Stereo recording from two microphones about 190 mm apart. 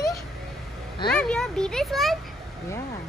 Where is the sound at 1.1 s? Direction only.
5° left (ahead or behind).